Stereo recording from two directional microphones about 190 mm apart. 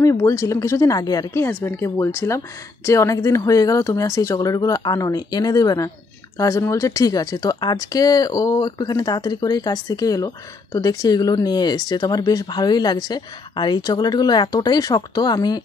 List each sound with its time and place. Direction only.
0.0 s speech: 15° left (ahead or behind)